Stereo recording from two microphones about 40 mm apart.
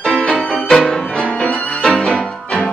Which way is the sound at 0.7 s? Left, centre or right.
Centre.